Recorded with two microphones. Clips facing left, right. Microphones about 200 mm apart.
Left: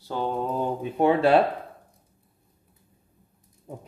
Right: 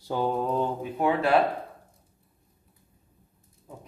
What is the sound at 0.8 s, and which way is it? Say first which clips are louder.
Speech: left 4 dB; 30° left (ahead or behind).